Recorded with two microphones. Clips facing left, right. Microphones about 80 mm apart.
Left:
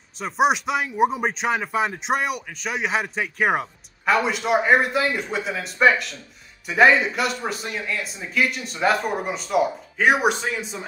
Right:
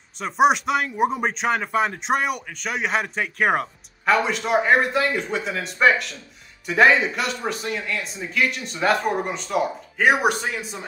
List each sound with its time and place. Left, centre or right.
0.2 s speech: centre